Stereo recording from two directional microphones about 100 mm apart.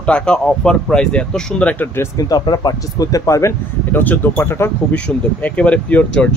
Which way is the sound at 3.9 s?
20° left (ahead or behind).